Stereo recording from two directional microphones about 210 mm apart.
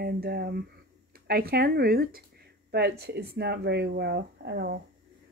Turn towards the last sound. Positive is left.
turn(degrees=-50)  # may be behind; listen again after turning